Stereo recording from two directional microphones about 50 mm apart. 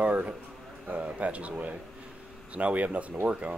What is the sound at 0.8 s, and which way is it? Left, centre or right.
Speech, right.